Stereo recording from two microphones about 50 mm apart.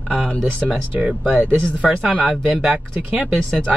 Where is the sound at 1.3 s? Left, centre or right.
Right.